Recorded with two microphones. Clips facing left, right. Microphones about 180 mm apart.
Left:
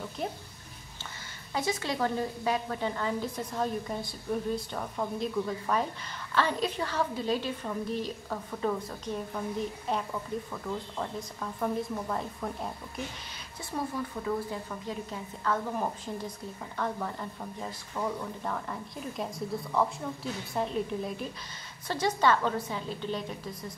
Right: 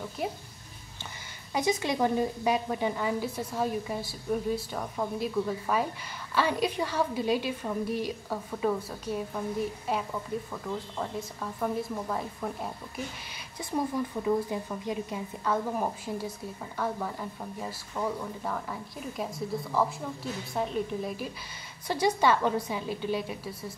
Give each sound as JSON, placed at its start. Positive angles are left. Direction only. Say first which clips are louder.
{"t": 1.5, "sound": "a woman's voice", "louder": "right 3 dB", "side_deg": -15}
{"t": 13.7, "sound": "a woman's voice", "louder": "right 4 dB", "side_deg": -15}